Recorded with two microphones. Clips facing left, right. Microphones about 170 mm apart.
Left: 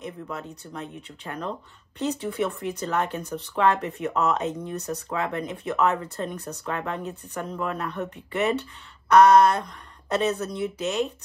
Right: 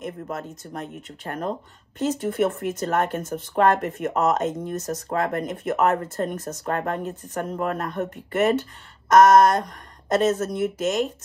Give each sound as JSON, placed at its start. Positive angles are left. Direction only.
{"t": 0.0, "sound": "speech", "side_deg": -50}